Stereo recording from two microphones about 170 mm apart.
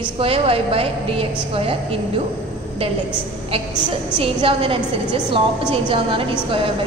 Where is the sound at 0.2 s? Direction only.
35° right (ahead or behind).